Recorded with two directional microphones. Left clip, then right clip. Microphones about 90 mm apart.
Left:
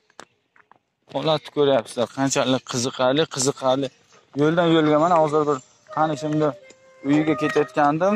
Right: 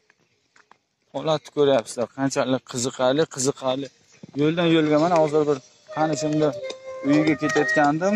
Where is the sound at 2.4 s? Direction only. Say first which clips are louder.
Left 2 dB; 25° right (ahead or behind).